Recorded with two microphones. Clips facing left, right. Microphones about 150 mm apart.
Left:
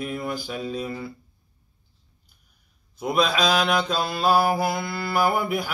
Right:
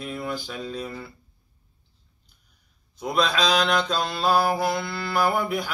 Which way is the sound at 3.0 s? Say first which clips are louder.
Left 1 dB; 10° left (ahead or behind).